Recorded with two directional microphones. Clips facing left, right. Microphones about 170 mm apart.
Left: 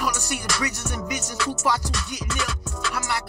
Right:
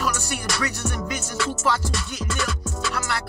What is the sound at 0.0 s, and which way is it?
Music, 15° left (ahead or behind).